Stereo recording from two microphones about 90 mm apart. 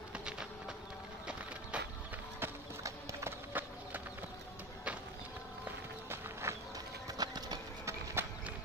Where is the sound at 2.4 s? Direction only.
25° right (ahead or behind).